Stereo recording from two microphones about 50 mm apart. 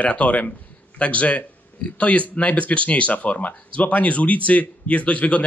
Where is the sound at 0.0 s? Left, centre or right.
Left.